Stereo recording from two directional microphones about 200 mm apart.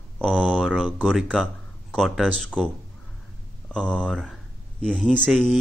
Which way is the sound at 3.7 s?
5° left (ahead or behind).